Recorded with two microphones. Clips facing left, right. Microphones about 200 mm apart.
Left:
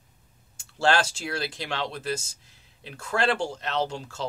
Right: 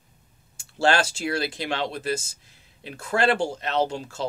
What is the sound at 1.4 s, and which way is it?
Speech, 10° right (ahead or behind).